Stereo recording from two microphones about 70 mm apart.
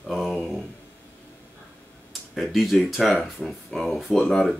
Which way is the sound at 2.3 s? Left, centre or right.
Centre.